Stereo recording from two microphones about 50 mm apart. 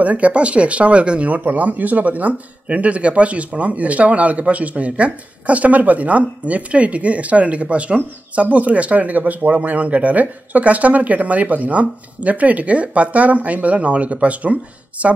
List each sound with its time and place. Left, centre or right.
0.0 s speech: right